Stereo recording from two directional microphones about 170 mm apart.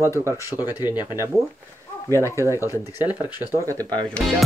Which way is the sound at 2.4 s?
15° right (ahead or behind).